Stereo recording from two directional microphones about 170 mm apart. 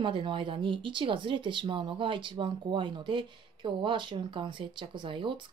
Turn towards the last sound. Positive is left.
turn(degrees=-30)  # may be behind; listen again after turning